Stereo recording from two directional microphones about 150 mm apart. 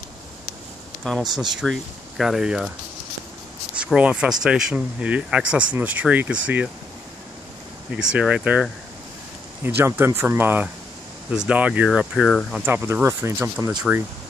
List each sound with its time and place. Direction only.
1.2 s speech: 30° right (ahead or behind)
1.6 s speech: centre (ahead or behind)
3.7 s speech: 5° right (ahead or behind)
7.9 s speech: 5° right (ahead or behind)
9.8 s speech: 15° right (ahead or behind); by 12.6 s centre (ahead or behind)
12.6 s speech: 15° right (ahead or behind)